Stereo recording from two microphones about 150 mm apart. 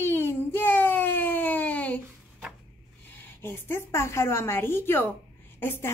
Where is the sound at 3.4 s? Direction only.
15° left (ahead or behind).